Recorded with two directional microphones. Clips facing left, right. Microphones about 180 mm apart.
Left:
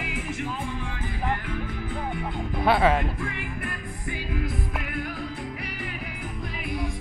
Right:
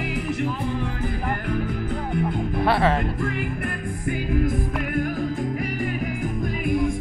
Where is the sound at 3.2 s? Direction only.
45° right (ahead or behind).